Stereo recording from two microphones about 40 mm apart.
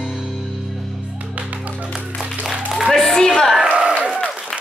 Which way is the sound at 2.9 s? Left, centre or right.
Centre.